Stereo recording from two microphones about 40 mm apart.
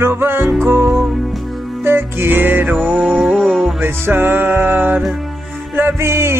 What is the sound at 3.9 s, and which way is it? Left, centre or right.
Music, right.